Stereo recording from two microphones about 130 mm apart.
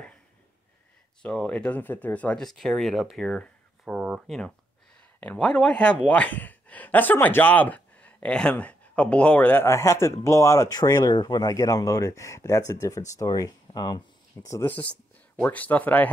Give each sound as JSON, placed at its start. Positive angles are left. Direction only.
{"t": 1.2, "sound": "speech", "side_deg": 5}
{"t": 5.2, "sound": "speech", "side_deg": 10}